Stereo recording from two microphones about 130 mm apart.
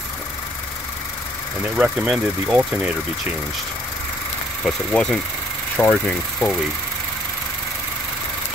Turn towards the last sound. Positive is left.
turn(degrees=10)  # may be behind; listen again after turning